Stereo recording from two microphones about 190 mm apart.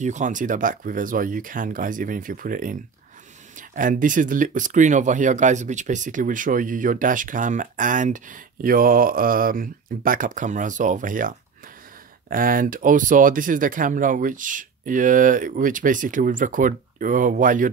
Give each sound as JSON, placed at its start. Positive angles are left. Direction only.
{"t": 0.0, "sound": "speech", "side_deg": -40}